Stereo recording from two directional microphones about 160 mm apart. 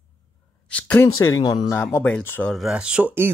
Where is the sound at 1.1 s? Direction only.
20° left (ahead or behind).